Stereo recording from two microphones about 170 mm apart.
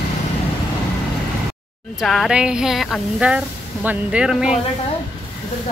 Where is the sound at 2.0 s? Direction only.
Centre (ahead or behind).